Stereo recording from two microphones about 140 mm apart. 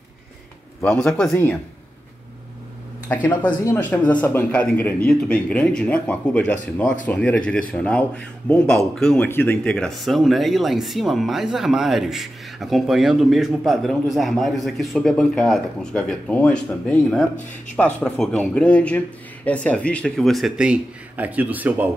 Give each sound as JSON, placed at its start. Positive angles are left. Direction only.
{"t": 0.8, "sound": "speech", "side_deg": 5}
{"t": 1.3, "sound": "speech", "side_deg": 15}
{"t": 3.1, "sound": "speech", "side_deg": 10}